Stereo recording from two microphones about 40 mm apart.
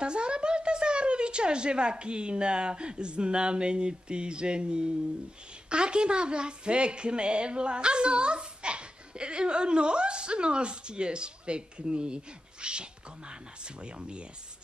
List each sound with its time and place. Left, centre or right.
0.0 s a woman's voice: right